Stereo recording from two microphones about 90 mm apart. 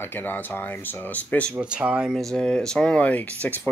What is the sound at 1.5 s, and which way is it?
Speech, 15° right (ahead or behind).